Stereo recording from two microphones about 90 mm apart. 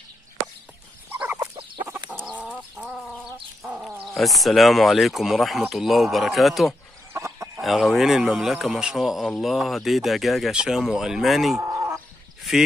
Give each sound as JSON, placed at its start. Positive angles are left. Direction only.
{"t": 2.2, "sound": "chicken", "side_deg": -15}
{"t": 4.0, "sound": "speech", "side_deg": 0}
{"t": 7.2, "sound": "chicken", "side_deg": -35}
{"t": 7.6, "sound": "speech", "side_deg": 0}
{"t": 11.6, "sound": "chicken", "side_deg": -35}